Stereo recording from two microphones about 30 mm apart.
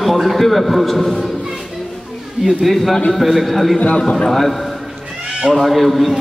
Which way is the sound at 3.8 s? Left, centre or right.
Left.